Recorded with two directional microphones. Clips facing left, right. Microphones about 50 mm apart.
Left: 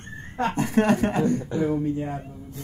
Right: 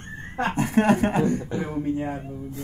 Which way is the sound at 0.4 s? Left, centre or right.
Right.